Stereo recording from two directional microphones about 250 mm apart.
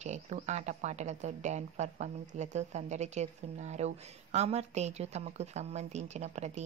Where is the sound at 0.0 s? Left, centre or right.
Right.